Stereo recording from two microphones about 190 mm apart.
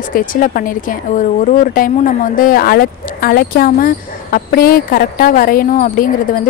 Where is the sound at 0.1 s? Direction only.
45° left (ahead or behind).